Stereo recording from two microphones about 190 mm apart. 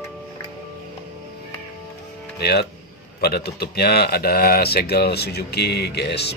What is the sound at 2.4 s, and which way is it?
Speech, 55° left (ahead or behind).